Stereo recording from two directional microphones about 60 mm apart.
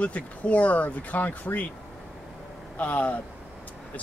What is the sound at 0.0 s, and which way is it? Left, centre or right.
Speech, left.